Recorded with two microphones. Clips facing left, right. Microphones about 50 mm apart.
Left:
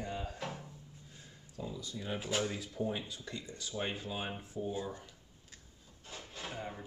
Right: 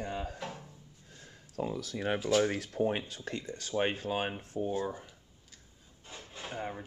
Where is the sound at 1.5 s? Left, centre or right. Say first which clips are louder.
Right 7 dB; right.